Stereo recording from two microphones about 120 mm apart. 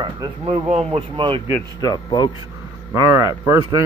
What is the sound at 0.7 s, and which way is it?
Speech, 55° right (ahead or behind).